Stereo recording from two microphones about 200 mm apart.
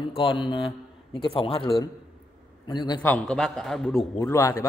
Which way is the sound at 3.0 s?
5° left (ahead or behind).